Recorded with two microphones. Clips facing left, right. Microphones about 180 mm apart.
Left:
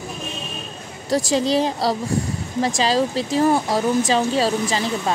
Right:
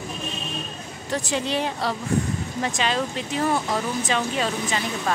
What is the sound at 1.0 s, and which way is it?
Speech, 35° left (ahead or behind).